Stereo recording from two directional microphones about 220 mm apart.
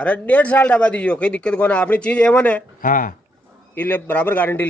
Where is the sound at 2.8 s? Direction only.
40° left (ahead or behind).